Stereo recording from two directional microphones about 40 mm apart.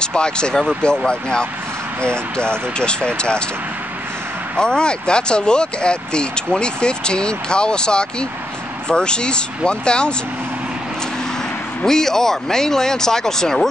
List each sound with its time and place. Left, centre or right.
0.0 s speech: left
4.6 s speech: left
11.8 s speech: centre